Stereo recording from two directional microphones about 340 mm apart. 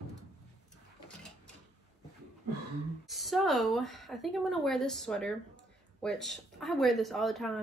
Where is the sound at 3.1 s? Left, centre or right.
Centre.